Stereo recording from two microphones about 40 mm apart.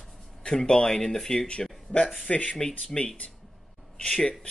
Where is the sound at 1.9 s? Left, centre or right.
Left.